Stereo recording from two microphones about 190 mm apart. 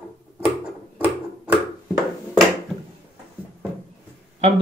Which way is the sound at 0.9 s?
10° right (ahead or behind).